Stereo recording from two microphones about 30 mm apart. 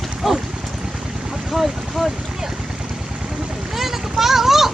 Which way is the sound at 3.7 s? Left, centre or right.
Centre.